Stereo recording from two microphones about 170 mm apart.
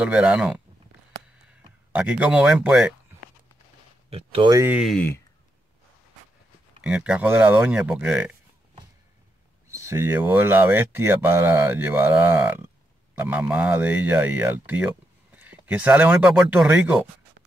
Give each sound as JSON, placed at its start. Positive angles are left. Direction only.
{"t": 0.0, "sound": "speech", "side_deg": -5}
{"t": 1.9, "sound": "speech", "side_deg": -10}
{"t": 4.1, "sound": "speech", "side_deg": -35}
{"t": 4.6, "sound": "speech", "side_deg": -5}
{"t": 4.9, "sound": "speech", "side_deg": 15}
{"t": 6.8, "sound": "speech", "side_deg": -5}
{"t": 9.7, "sound": "speech", "side_deg": -15}